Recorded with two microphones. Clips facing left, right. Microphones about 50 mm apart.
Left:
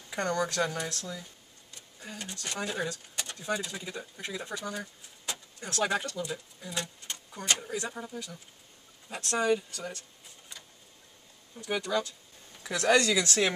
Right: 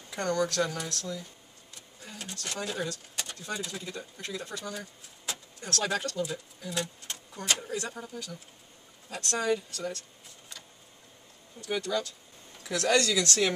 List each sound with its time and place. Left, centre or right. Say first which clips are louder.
0.1 s speech: right 1 dB; centre
1.7 s vehicle: left 2 dB; centre
2.4 s speech: even; centre
5.7 s speech: left 1 dB; centre
11.5 s speech: left 1 dB; centre